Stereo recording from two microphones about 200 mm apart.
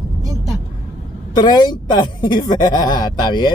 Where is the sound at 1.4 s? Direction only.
20° left (ahead or behind).